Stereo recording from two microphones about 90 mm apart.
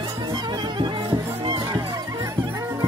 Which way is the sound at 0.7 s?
60° right (ahead or behind).